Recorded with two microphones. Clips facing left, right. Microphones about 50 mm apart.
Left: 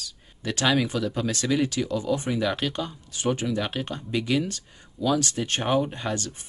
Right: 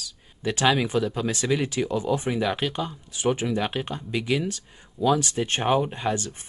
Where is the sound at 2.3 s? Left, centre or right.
Centre.